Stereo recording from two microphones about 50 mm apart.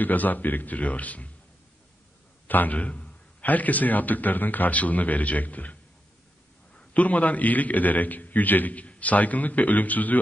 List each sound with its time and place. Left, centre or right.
0.0 s a man's voice: left
2.4 s a man's voice: left